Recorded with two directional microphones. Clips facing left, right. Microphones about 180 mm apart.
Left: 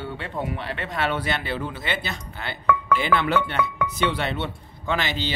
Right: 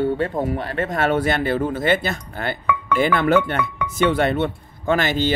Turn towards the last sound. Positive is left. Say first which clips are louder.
# right 7 dB
turn(degrees=-50)  # may be behind; listen again after turning